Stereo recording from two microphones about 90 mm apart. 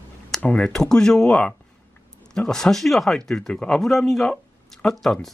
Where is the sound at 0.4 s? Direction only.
10° left (ahead or behind).